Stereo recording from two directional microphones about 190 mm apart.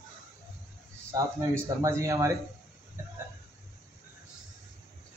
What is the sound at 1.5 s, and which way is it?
Speech, 15° right (ahead or behind).